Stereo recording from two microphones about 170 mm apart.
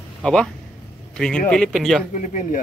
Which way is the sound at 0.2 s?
5° left (ahead or behind).